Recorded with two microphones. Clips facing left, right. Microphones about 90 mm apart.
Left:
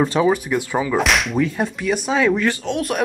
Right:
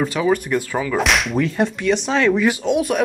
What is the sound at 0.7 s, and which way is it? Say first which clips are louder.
Speech: left 1 dB; 20° left (ahead or behind).